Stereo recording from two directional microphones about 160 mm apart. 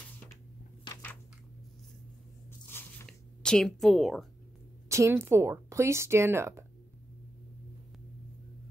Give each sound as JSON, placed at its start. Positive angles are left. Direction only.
{"t": 2.7, "sound": "biting", "side_deg": 15}
{"t": 3.1, "sound": "speech", "side_deg": 5}
{"t": 4.8, "sound": "speech", "side_deg": -15}